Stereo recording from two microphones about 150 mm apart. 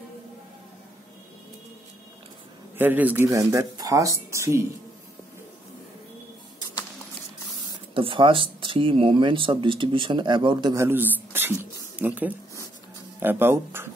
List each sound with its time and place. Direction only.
2.8 s speech: 10° right (ahead or behind)
7.9 s speech: 35° right (ahead or behind)
10.7 s speech: 15° right (ahead or behind)